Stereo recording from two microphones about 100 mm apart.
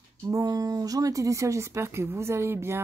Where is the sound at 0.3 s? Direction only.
35° right (ahead or behind).